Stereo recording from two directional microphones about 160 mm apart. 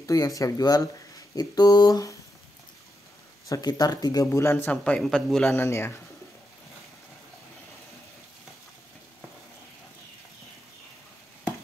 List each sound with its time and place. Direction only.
0.0 s speech: 20° left (ahead or behind)
3.4 s speech: 25° left (ahead or behind)
4.6 s speech: 5° left (ahead or behind)